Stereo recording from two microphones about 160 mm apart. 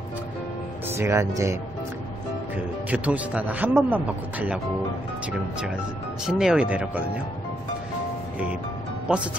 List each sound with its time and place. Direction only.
0.8 s speech: 15° right (ahead or behind)
6.2 s speech: 5° right (ahead or behind)